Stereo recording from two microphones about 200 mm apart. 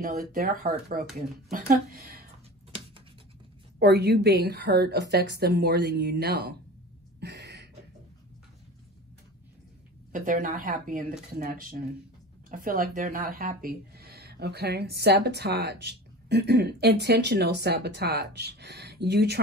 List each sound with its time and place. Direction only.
0.0 s speech: 50° right (ahead or behind)
3.8 s a woman's voice: 55° right (ahead or behind)
7.2 s a sound: 55° right (ahead or behind)
10.1 s a woman's voice: 40° right (ahead or behind); by 19.4 s 55° right (ahead or behind)